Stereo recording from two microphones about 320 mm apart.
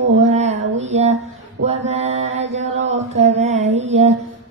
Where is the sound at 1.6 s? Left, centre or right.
Centre.